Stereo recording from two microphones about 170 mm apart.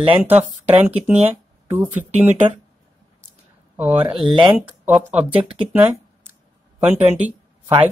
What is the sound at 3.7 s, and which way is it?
Speech, 10° right (ahead or behind).